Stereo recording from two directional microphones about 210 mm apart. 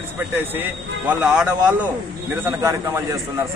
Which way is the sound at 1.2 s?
5° right (ahead or behind).